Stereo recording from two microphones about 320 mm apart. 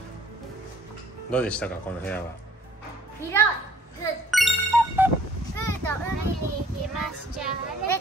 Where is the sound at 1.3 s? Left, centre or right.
Centre.